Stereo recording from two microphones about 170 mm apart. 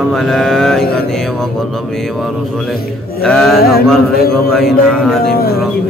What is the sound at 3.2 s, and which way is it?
Speech, centre (ahead or behind).